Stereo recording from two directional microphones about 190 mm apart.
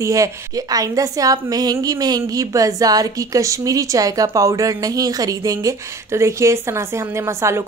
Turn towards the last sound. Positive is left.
turn(degrees=-15)  # may be behind; listen again after turning